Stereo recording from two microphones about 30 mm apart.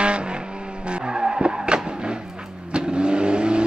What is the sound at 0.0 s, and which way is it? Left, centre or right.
Vehicle, right.